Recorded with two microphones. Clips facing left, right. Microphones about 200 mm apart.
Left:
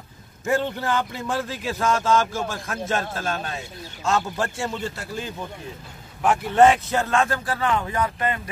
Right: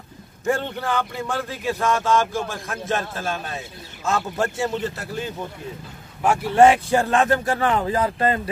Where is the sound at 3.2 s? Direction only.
Centre (ahead or behind).